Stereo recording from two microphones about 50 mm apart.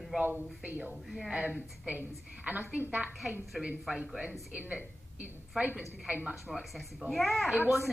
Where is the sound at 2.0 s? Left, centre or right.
Right.